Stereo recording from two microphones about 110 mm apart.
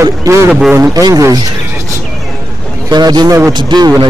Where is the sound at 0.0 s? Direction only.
30° right (ahead or behind).